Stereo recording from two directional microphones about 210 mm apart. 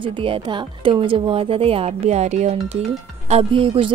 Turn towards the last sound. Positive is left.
turn(degrees=-25)  # may be behind; listen again after turning